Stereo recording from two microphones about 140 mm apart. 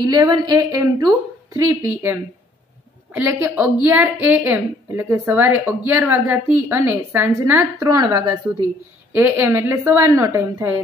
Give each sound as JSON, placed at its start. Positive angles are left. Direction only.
{"t": 0.0, "sound": "a woman's voice", "side_deg": -25}
{"t": 7.8, "sound": "a woman's voice", "side_deg": -25}
{"t": 9.1, "sound": "a woman's voice", "side_deg": -15}